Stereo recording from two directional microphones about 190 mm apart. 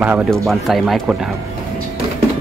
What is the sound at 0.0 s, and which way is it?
Speech, 5° right (ahead or behind).